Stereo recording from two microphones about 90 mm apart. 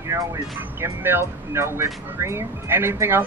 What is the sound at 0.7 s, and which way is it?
Speech, 25° right (ahead or behind).